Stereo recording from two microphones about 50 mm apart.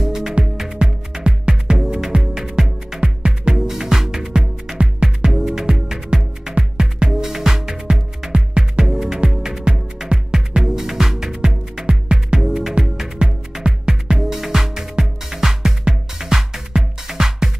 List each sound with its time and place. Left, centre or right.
0.0 s music: centre